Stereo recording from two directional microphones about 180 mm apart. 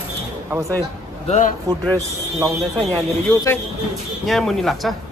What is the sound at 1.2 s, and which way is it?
Speech, 40° left (ahead or behind).